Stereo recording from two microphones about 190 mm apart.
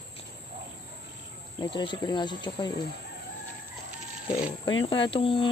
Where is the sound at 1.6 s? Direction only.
25° left (ahead or behind).